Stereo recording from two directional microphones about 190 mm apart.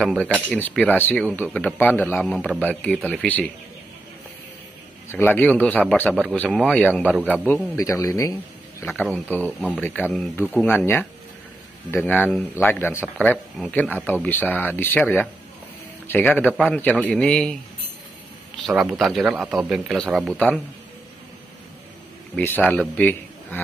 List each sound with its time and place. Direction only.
0.0 s a man's voice: 5° left (ahead or behind)
5.1 s a man's voice: 10° left (ahead or behind)
18.8 s a man's voice: centre (ahead or behind)
22.3 s a man's voice: 10° left (ahead or behind)